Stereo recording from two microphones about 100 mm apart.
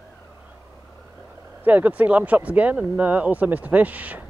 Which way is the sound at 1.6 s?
15° right (ahead or behind).